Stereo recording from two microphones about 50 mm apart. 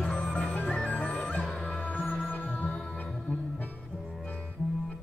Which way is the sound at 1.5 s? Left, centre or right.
Centre.